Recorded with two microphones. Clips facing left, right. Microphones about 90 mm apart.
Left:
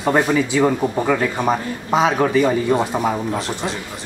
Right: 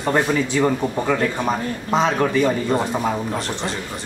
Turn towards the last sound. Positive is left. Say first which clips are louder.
# left 2 dB
turn(degrees=5)  # may be behind; listen again after turning